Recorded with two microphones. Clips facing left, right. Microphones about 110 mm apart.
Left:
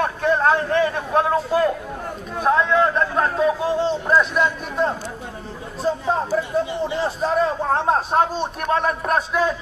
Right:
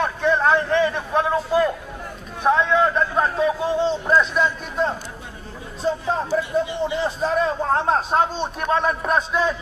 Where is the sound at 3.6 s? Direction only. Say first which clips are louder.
Even; 5° left (ahead or behind).